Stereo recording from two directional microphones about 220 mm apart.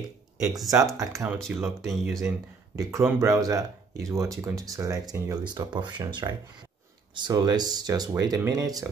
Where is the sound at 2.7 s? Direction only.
15° right (ahead or behind).